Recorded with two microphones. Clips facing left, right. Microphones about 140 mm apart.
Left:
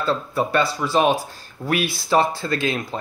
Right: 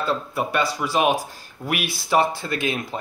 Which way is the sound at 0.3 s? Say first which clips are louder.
Left 3 dB; 10° right (ahead or behind).